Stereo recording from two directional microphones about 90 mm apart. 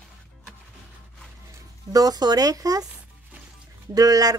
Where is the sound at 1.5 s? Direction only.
40° right (ahead or behind).